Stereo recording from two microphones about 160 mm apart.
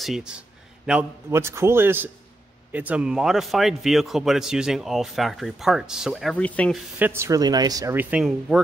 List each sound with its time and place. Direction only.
0.0 s speech: centre (ahead or behind)
1.3 s a man's voice: 15° right (ahead or behind); by 6.8 s 10° left (ahead or behind)
7.0 s speech: 15° right (ahead or behind)
7.9 s a man's voice: 10° right (ahead or behind)